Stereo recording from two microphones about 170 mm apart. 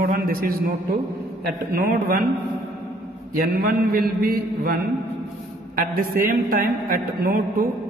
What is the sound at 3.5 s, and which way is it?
A man's voice, 65° right (ahead or behind).